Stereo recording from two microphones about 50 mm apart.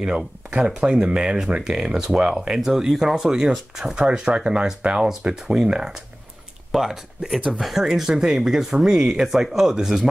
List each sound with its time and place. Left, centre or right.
0.6 s speech: centre
4.0 s speech: right